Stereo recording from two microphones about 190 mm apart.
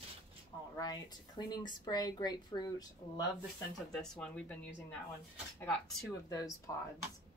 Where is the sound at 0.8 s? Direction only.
20° left (ahead or behind).